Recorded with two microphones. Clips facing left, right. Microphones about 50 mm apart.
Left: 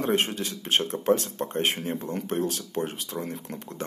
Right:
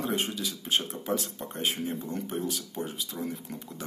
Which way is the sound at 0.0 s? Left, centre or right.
Left.